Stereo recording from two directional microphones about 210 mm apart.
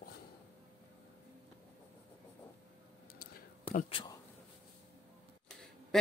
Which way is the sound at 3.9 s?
25° left (ahead or behind).